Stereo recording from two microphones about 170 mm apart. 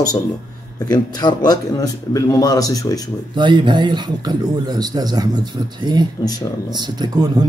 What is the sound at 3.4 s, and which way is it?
A man's voice, 25° right (ahead or behind).